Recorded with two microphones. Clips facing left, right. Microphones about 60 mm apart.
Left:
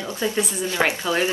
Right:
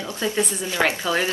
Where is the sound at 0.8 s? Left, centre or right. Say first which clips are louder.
Even; centre.